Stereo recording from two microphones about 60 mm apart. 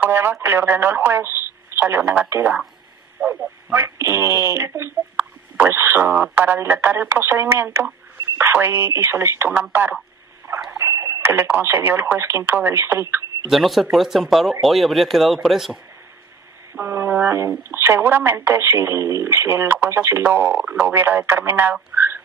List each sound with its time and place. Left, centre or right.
0.1 s a man's voice: right
10.5 s alarm clock: right
10.9 s radio: right
11.5 s speech: right
13.5 s speech: centre
16.8 s speech: right
21.9 s turkey: right